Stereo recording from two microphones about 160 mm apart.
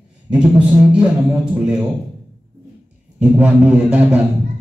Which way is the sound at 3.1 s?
10° right (ahead or behind).